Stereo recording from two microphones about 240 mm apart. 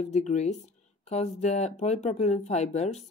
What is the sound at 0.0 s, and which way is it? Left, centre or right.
Speech, left.